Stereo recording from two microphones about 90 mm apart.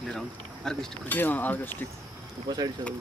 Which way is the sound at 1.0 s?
20° left (ahead or behind).